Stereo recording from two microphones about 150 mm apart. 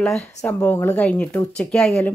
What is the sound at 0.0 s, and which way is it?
Speech, 5° left (ahead or behind).